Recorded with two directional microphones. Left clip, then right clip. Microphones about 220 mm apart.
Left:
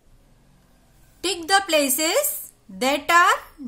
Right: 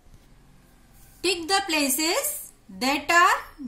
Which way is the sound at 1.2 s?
50° left (ahead or behind).